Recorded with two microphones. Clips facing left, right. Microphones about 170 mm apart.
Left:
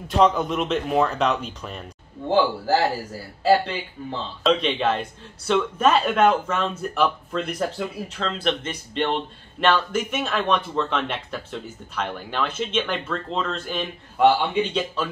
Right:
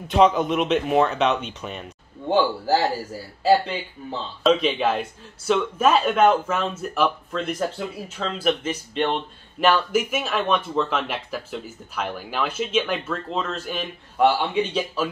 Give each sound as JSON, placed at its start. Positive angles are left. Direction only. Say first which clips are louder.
{"t": 0.1, "sound": "speech", "louder": "right 2 dB", "side_deg": -5}
{"t": 4.4, "sound": "speech", "louder": "right 2 dB", "side_deg": -5}